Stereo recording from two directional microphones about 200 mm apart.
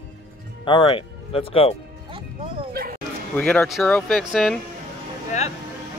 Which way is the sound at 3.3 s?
10° left (ahead or behind).